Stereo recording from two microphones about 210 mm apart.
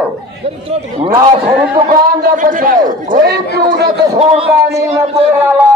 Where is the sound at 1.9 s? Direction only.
40° right (ahead or behind).